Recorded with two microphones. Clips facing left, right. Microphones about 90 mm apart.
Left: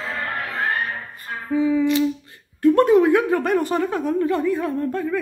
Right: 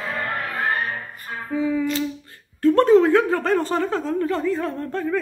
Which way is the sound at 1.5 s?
15° left (ahead or behind).